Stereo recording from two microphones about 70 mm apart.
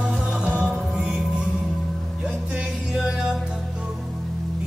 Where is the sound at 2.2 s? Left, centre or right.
Centre.